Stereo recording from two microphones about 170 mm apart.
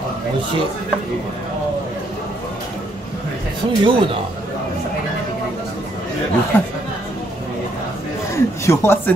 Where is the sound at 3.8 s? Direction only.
30° right (ahead or behind).